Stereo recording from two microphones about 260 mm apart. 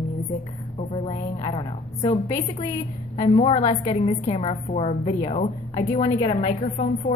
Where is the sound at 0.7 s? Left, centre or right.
Left.